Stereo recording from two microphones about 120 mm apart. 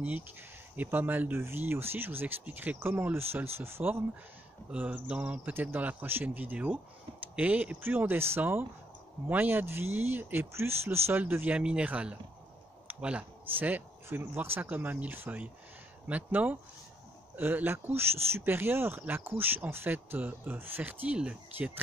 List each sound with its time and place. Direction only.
0.7 s speech: 15° right (ahead or behind)